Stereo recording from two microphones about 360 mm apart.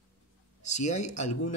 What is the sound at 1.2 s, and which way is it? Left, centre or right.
Speech, left.